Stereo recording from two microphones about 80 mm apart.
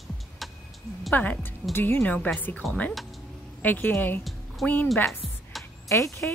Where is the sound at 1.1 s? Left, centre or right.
Left.